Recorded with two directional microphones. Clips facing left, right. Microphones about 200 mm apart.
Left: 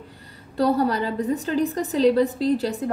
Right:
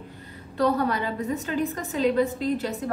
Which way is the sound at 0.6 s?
35° left (ahead or behind).